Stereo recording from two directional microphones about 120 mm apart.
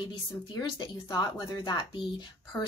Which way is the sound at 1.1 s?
35° left (ahead or behind).